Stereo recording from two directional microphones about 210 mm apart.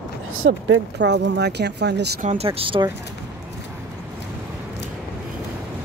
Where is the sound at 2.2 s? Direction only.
30° right (ahead or behind).